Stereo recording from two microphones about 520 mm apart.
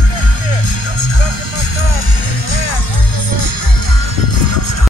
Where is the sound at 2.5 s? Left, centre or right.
Left.